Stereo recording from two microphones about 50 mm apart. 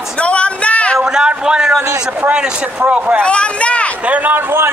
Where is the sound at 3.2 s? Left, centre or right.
Left.